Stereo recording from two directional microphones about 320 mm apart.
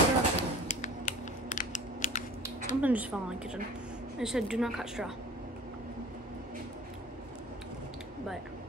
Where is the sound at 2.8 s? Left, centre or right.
Centre.